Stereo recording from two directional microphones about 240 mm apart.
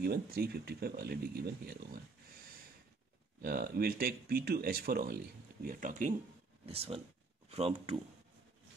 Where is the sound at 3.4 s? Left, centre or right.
Right.